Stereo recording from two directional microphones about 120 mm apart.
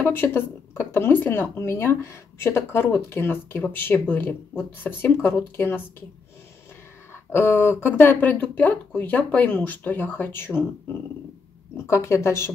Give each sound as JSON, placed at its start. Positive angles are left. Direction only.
{"t": 0.0, "sound": "speech", "side_deg": 20}
{"t": 7.3, "sound": "speech", "side_deg": 20}
{"t": 11.7, "sound": "speech", "side_deg": 25}